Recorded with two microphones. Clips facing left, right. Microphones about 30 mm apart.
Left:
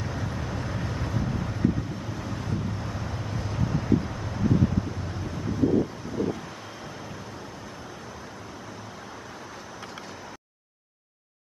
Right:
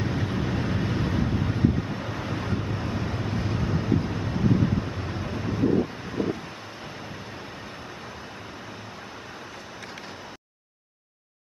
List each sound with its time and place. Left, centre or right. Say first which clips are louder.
0.0 s vehicle: right 5 dB; right
6.0 s wind: right 1 dB; right